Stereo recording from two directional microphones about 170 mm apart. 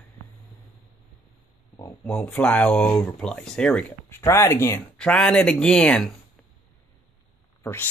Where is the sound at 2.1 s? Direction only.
5° left (ahead or behind).